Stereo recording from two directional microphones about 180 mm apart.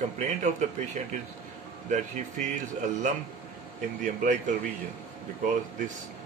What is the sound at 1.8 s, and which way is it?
Speech, 40° right (ahead or behind).